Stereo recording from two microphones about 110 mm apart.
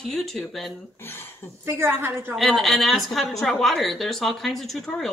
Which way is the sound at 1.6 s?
20° right (ahead or behind).